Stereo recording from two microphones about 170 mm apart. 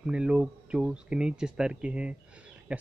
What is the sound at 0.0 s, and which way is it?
Speech, 5° right (ahead or behind).